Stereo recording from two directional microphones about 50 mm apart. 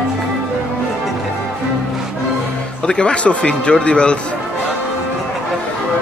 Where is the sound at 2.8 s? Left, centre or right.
Left.